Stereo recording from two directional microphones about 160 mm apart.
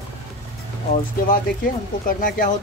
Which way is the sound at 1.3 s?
60° left (ahead or behind).